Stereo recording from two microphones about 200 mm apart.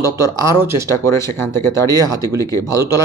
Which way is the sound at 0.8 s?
15° left (ahead or behind).